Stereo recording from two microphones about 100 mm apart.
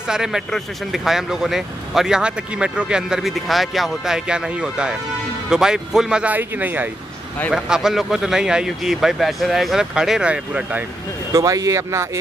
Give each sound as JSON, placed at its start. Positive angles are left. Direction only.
{"t": 0.1, "sound": "speech", "side_deg": -5}
{"t": 7.5, "sound": "speech", "side_deg": -5}
{"t": 11.3, "sound": "speech", "side_deg": -35}